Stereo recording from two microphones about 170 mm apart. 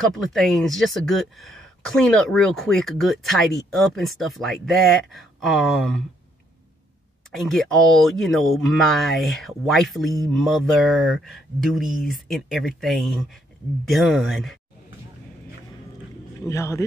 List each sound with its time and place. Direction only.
0.1 s speech: centre (ahead or behind)
7.2 s speech: 5° left (ahead or behind)
16.4 s a man's voice: 15° left (ahead or behind)